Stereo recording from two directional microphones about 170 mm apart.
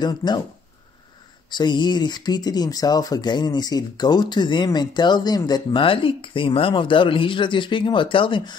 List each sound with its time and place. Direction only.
0.0 s speech: 25° left (ahead or behind)
1.5 s speech: 25° left (ahead or behind)